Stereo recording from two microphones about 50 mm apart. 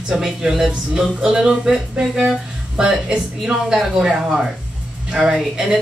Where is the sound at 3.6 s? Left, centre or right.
Centre.